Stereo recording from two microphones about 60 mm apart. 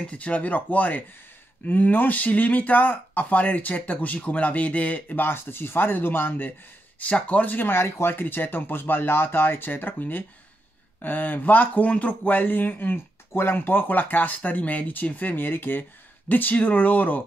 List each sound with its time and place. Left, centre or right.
0.0 s speech: left